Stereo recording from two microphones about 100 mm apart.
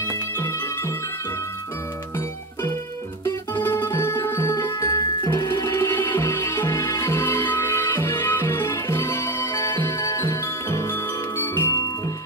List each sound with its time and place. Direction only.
0.4 s music: 30° left (ahead or behind)
3.5 s music: 20° left (ahead or behind)